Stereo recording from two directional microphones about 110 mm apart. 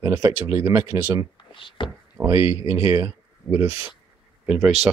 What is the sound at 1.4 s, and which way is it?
Speech, 50° left (ahead or behind).